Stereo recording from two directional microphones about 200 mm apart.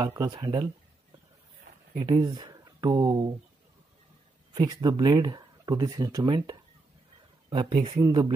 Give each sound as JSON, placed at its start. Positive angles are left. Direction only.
{"t": 0.0, "sound": "speech", "side_deg": -20}
{"t": 2.0, "sound": "speech", "side_deg": -20}
{"t": 4.6, "sound": "speech", "side_deg": -20}